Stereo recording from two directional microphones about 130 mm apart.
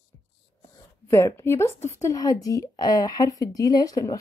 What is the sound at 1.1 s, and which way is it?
A woman's voice, 20° left (ahead or behind).